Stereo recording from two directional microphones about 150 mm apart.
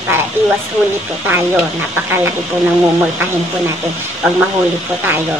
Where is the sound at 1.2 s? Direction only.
10° right (ahead or behind).